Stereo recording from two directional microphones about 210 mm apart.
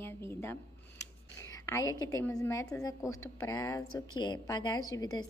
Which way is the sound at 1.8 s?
70° left (ahead or behind).